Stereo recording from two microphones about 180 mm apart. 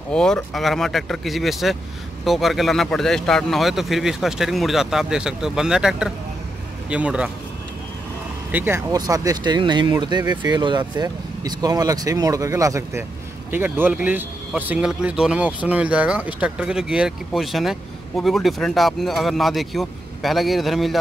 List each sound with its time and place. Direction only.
0.1 s a man's voice: 5° left (ahead or behind)
8.5 s speech: 10° right (ahead or behind)